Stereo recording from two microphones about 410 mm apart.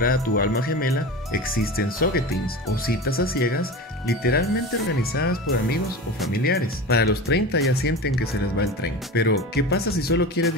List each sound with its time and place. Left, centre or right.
0.0 s speech: left